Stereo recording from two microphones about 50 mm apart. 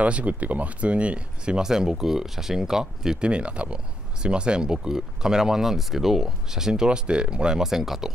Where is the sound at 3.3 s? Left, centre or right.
Right.